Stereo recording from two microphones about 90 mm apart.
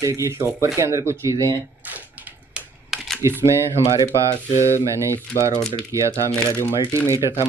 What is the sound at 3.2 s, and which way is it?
Speech, 30° right (ahead or behind).